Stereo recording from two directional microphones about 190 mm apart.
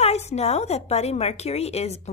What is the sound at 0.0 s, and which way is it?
A woman's voice, 35° left (ahead or behind).